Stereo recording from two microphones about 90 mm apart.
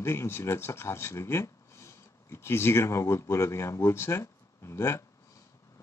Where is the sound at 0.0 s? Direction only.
30° left (ahead or behind).